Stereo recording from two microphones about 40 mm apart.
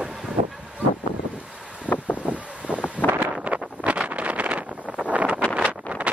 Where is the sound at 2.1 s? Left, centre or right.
Right.